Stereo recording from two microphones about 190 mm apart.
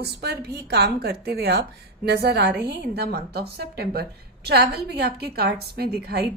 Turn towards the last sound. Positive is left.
turn(degrees=-60)  # may be behind; listen again after turning